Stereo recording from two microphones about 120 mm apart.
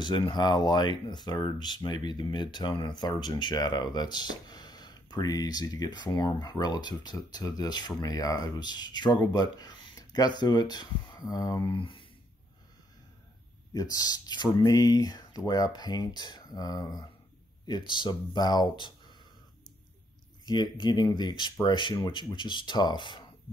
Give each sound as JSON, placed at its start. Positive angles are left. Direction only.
{"t": 0.0, "sound": "speech", "side_deg": 40}
{"t": 11.8, "sound": "a sound", "side_deg": 45}
{"t": 13.7, "sound": "speech", "side_deg": 30}
{"t": 20.4, "sound": "speech", "side_deg": 40}